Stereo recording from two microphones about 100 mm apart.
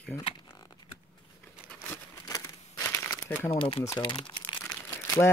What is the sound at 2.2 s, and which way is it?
Crumpling, 35° left (ahead or behind).